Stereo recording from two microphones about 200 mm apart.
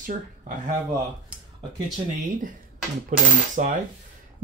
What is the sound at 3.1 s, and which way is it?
Speech, 40° right (ahead or behind).